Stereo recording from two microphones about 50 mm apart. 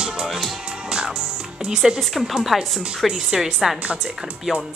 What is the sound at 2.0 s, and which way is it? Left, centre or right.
Speech, centre.